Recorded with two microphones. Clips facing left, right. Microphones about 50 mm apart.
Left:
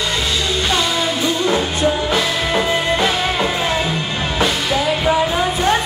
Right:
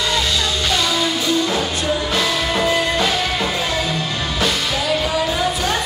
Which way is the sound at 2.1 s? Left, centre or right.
Centre.